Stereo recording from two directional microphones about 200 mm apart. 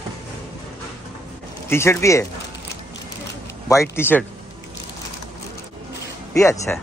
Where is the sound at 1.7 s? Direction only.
10° left (ahead or behind).